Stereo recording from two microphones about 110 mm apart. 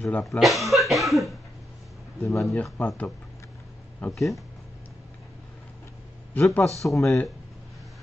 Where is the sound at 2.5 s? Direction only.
15° left (ahead or behind).